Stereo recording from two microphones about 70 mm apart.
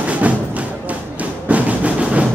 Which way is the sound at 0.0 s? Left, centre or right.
Centre.